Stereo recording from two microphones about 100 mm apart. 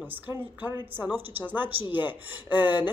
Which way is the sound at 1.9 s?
20° right (ahead or behind).